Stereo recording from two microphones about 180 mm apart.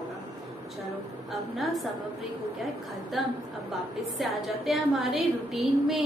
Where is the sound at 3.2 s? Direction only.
Centre (ahead or behind).